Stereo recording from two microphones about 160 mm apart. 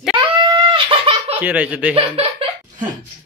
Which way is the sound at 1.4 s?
10° right (ahead or behind).